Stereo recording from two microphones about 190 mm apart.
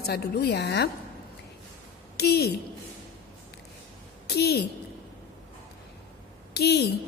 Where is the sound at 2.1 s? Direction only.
55° left (ahead or behind).